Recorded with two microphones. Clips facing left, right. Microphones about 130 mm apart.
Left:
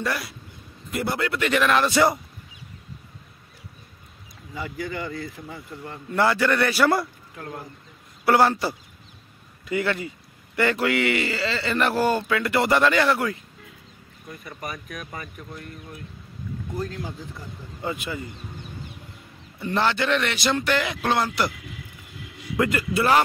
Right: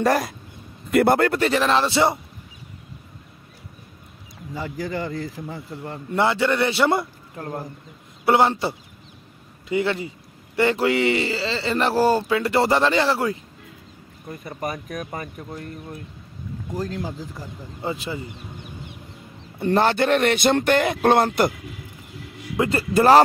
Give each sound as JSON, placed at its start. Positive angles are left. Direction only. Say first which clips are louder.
{"t": 0.0, "sound": "speech", "louder": "right 8 dB", "side_deg": -45}
{"t": 1.4, "sound": "speech", "louder": "right 1 dB", "side_deg": -35}
{"t": 4.6, "sound": "speech", "louder": "right 3 dB", "side_deg": -35}
{"t": 7.3, "sound": "a man's voice", "louder": "right 5 dB", "side_deg": -35}
{"t": 8.3, "sound": "speech", "louder": "right 1 dB", "side_deg": -20}
{"t": 14.6, "sound": "a man's voice", "louder": "right 7 dB", "side_deg": -40}
{"t": 16.7, "sound": "a man's voice", "louder": "right 4 dB", "side_deg": -35}
{"t": 19.6, "sound": "speech", "louder": "right 5 dB", "side_deg": -45}
{"t": 22.6, "sound": "a man's voice", "louder": "right 4 dB", "side_deg": -30}